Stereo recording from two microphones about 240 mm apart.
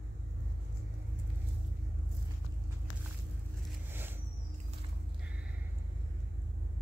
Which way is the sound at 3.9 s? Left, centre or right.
Centre.